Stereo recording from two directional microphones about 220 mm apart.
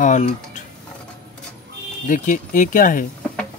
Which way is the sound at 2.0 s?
35° left (ahead or behind).